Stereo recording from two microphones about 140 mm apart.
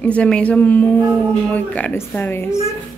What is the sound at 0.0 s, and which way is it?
A woman's voice, 10° left (ahead or behind).